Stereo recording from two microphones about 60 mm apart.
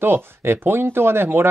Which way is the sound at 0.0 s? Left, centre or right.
Right.